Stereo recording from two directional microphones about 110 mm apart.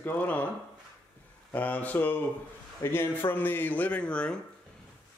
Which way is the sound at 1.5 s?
15° left (ahead or behind).